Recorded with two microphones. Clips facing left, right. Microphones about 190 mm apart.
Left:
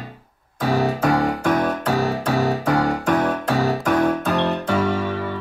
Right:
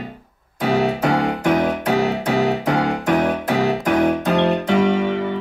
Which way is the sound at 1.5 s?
20° right (ahead or behind).